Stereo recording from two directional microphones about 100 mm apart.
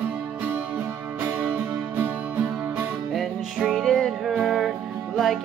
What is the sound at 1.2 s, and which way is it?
Music, 15° right (ahead or behind).